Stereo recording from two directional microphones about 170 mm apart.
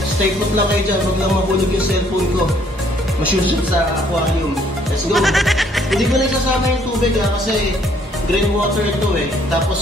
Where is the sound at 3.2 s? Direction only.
10° right (ahead or behind).